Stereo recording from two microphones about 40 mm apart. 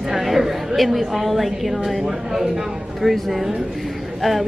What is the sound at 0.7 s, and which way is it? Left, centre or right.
A woman's voice, centre.